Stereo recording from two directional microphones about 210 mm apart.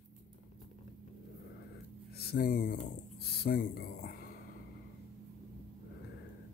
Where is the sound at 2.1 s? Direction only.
45° left (ahead or behind).